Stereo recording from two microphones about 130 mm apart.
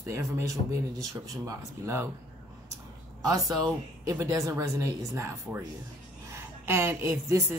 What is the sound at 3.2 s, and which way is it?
A woman's voice, 30° right (ahead or behind).